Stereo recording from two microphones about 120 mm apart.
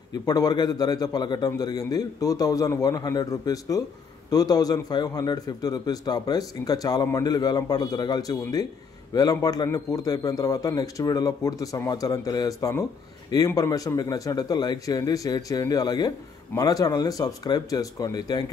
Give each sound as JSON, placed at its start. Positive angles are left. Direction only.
{"t": 0.3, "sound": "a man's voice", "side_deg": 35}